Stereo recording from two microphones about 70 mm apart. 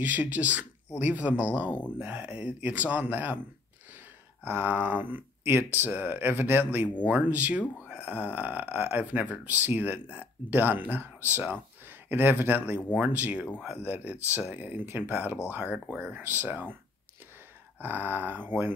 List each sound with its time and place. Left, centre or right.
0.0 s speech: right
4.5 s speech: right
17.7 s speech: right